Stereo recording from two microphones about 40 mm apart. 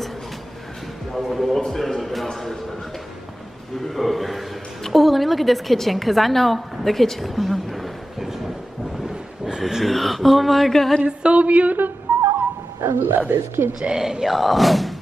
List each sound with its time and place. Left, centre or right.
1.1 s speech: centre
3.9 s a woman's voice: centre
9.6 s speech: centre
9.8 s speech: centre
11.1 s a sound: right
11.4 s a woman's voice: right
12.1 s a sound: right
12.8 s speech: right
13.7 s speech: centre